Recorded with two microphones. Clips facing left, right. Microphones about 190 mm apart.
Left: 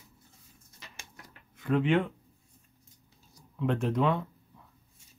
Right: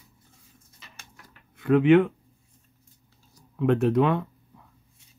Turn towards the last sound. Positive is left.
turn(degrees=-60)  # may be behind; listen again after turning